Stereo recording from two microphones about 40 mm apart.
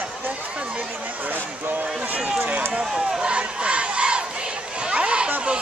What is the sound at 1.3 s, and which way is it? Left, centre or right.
Speech, right.